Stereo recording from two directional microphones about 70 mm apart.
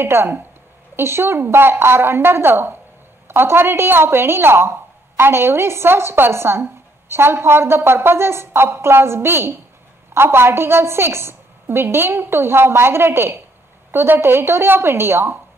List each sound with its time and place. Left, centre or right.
0.0 s a woman's voice: right